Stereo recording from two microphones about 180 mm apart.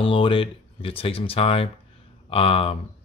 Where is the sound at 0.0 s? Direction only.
30° left (ahead or behind).